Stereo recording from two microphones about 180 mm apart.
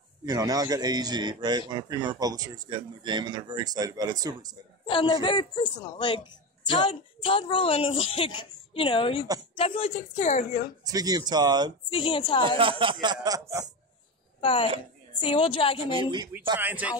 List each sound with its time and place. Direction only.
0.2 s a man's voice: 20° right (ahead or behind)
4.8 s a woman's voice: 25° left (ahead or behind)
10.9 s a man's voice: 20° right (ahead or behind)
11.9 s a woman's voice: 30° left (ahead or behind)
12.5 s a man's voice: 30° right (ahead or behind)
14.4 s a woman's voice: 30° left (ahead or behind)
15.9 s a man's voice: 25° right (ahead or behind)
16.5 s speech: 10° right (ahead or behind)